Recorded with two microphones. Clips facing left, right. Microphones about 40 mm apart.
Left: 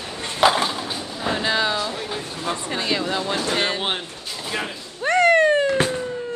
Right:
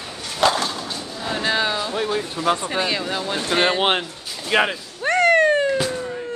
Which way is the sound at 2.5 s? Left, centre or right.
Right.